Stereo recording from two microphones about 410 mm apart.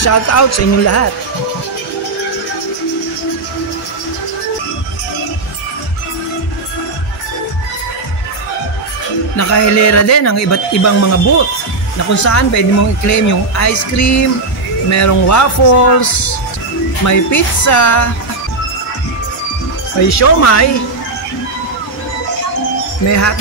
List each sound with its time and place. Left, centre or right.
0.0 s speech: left
9.4 s speech: left
20.0 s speech: left
23.0 s speech: left